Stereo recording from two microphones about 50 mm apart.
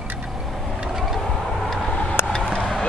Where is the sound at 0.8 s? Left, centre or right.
Centre.